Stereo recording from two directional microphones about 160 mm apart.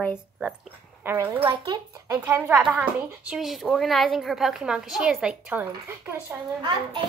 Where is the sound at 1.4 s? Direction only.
30° right (ahead or behind).